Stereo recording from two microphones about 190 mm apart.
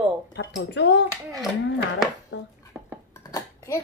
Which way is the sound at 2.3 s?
80° left.